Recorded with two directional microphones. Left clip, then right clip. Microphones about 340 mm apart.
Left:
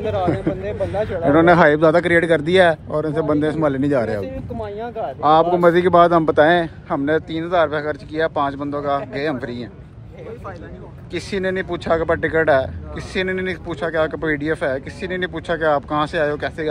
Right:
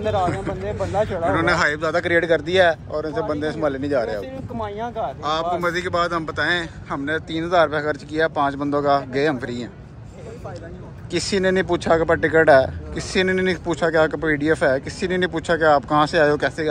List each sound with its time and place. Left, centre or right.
0.5 s a man's voice: centre
5.2 s speech: centre
11.1 s speech: centre